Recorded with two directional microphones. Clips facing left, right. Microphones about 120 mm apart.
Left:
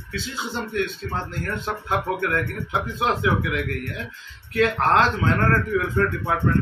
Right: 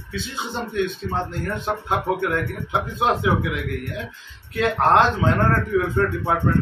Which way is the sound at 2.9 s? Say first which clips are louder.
Right 2 dB; 25° right (ahead or behind).